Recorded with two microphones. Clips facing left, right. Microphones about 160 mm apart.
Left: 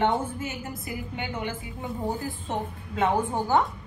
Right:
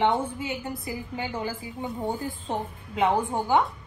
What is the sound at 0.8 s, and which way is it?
Speech, 30° right (ahead or behind).